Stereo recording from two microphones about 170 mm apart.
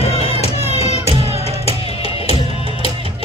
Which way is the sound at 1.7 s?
35° left (ahead or behind).